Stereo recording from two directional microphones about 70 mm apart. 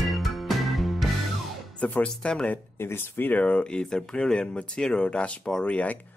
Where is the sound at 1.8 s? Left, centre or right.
Centre.